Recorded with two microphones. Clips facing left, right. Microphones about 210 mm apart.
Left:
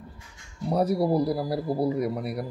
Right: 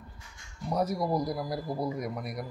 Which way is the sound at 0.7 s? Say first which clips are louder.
Left 6 dB; 35° left (ahead or behind).